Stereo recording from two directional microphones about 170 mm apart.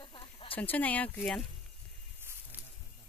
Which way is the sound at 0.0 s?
30° left (ahead or behind).